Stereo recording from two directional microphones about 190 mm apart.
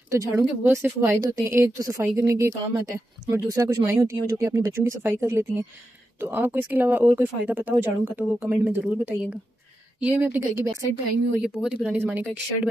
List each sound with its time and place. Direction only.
0.1 s speech: 15° right (ahead or behind)